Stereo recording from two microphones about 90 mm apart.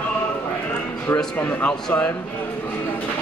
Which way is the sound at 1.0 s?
20° left (ahead or behind).